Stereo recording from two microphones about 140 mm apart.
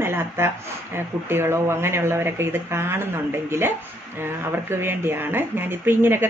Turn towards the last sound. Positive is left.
turn(degrees=-15)  # may be behind; listen again after turning